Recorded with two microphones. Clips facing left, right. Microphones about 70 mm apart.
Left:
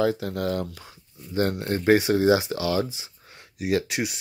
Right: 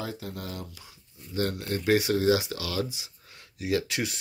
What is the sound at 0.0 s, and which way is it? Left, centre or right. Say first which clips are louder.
Speech: left 12 dB; left.